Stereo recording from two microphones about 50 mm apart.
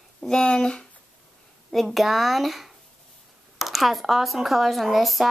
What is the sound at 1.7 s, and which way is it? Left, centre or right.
Speech, centre.